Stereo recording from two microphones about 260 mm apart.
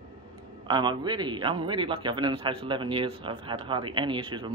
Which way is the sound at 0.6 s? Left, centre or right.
Centre.